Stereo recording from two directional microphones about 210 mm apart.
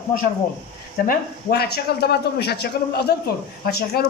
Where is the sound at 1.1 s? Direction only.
50° left (ahead or behind).